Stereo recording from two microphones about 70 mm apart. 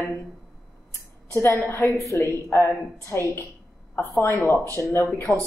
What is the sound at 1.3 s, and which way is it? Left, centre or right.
Speech, left.